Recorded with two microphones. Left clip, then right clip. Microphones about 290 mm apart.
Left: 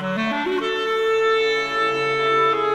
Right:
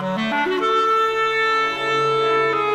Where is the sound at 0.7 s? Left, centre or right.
Centre.